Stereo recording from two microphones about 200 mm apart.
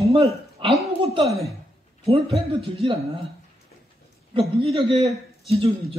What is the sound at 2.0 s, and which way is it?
Speech, 30° right (ahead or behind).